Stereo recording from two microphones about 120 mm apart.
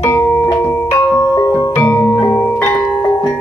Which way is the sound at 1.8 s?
15° left (ahead or behind).